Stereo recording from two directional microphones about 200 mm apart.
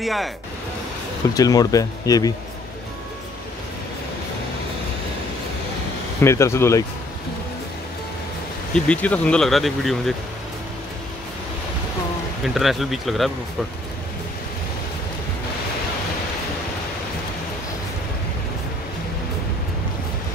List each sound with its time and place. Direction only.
0.0 s speech: centre (ahead or behind)
1.3 s speech: 20° left (ahead or behind)
6.2 s speech: 15° left (ahead or behind)
8.7 s speech: 5° left (ahead or behind)
12.5 s speech: centre (ahead or behind)